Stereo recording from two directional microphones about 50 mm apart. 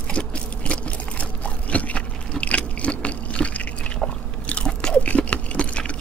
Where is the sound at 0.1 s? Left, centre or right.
Left.